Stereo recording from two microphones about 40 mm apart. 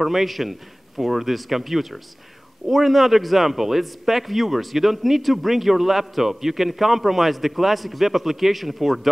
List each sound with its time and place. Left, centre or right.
0.0 s a man's voice: centre